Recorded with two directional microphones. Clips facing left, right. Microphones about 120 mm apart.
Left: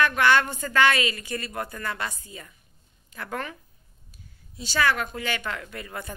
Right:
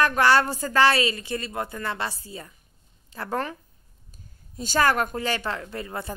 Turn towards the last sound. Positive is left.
turn(degrees=-30)  # may be behind; listen again after turning